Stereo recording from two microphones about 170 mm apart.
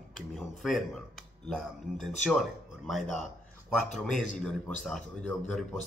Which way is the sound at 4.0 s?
Centre (ahead or behind).